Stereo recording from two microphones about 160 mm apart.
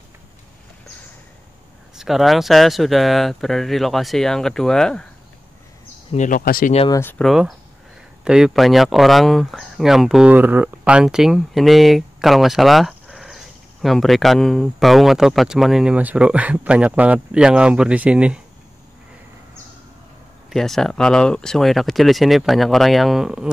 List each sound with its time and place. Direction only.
2.0 s speech: centre (ahead or behind)
6.1 s speech: 55° left (ahead or behind)
6.9 s speech: 15° left (ahead or behind)
7.2 s speech: centre (ahead or behind)
20.4 s speech: centre (ahead or behind)